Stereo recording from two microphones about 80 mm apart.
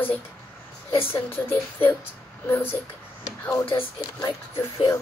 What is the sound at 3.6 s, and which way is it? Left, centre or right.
Speech, left.